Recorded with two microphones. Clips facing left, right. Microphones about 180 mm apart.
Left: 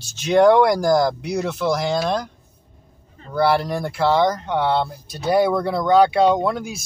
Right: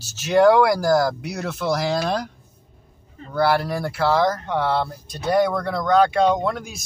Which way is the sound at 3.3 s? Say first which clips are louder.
Left 1 dB; 5° right (ahead or behind).